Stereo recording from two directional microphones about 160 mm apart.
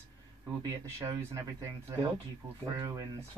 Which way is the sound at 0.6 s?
20° right (ahead or behind).